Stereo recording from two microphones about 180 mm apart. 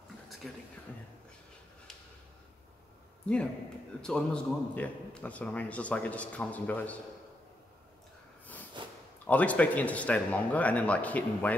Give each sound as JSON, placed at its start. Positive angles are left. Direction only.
{"t": 0.4, "sound": "speech", "side_deg": 0}
{"t": 4.0, "sound": "a man's voice", "side_deg": 5}
{"t": 8.8, "sound": "a sound", "side_deg": -30}
{"t": 9.2, "sound": "a man's voice", "side_deg": 10}